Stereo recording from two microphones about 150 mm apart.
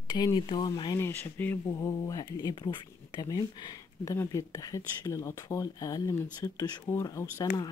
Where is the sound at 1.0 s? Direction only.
15° left (ahead or behind).